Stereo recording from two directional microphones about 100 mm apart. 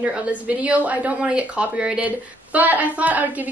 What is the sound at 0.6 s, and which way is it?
Speech, 15° right (ahead or behind).